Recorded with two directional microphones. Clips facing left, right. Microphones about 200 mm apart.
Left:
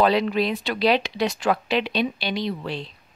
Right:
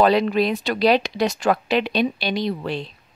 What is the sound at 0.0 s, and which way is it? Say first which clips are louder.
Speech: right 3 dB; 45° right (ahead or behind).